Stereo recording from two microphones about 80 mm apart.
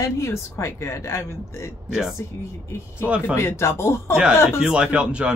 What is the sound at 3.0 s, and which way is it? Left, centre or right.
Speech, centre.